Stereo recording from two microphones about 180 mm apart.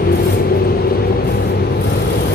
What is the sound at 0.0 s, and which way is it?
Vehicle, 60° left (ahead or behind).